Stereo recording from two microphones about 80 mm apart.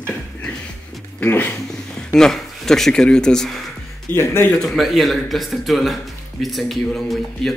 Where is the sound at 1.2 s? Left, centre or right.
Left.